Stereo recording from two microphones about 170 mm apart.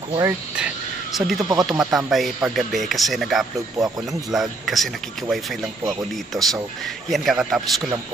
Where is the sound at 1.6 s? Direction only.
Centre (ahead or behind).